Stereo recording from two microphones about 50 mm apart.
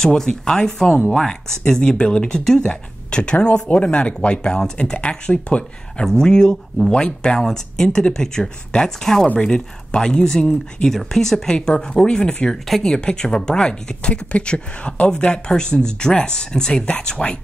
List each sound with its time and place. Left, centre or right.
0.0 s speech: centre
12.4 s speech: centre